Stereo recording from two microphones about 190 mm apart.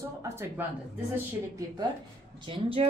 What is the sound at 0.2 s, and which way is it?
Speech, 15° right (ahead or behind).